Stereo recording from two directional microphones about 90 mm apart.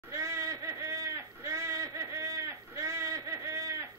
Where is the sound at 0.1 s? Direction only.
35° right (ahead or behind).